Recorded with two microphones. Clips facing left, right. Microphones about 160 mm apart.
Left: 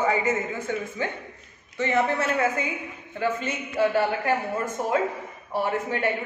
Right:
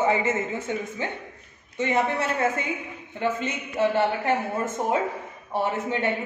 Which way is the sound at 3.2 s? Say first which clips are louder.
Even; 20° right (ahead or behind).